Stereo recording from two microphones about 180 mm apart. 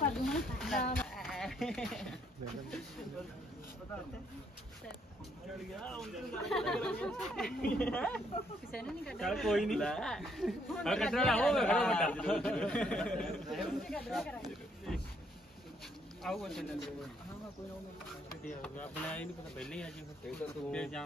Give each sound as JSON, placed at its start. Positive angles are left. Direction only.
{"t": 0.1, "sound": "a sound", "side_deg": 0}
{"t": 0.9, "sound": "speech", "side_deg": 0}
{"t": 5.8, "sound": "speech", "side_deg": 0}
{"t": 16.2, "sound": "speech", "side_deg": 0}
{"t": 18.6, "sound": "speech", "side_deg": 5}